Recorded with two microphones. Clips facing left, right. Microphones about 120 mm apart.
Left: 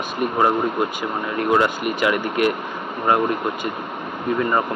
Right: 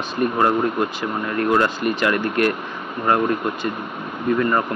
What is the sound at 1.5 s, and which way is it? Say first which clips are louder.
Speech: even; 15° left (ahead or behind).